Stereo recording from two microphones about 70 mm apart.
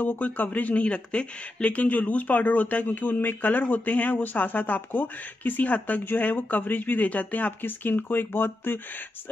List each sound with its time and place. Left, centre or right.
0.0 s speech: left